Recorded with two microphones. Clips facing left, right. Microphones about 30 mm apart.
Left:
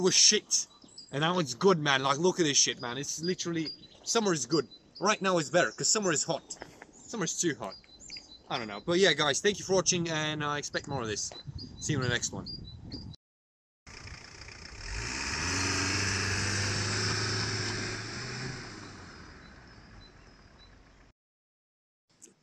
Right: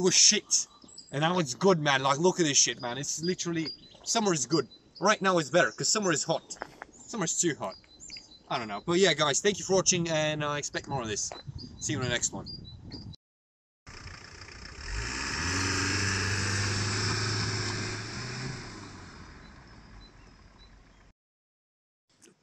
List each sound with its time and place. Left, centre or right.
0.0 s speech: centre
1.4 s a man's voice: centre
1.8 s a man's voice: centre
2.7 s speech: centre
3.0 s a man's voice: centre
5.2 s speech: centre
6.6 s a sound: right
7.1 s speech: centre
8.8 s a man's voice: centre
13.8 s vehicle: centre